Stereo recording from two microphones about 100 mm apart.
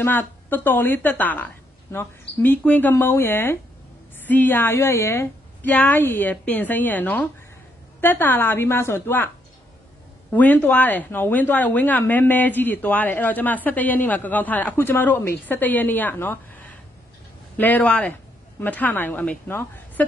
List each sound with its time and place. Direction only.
0.0 s speech: 20° left (ahead or behind)
10.3 s speech: 15° left (ahead or behind)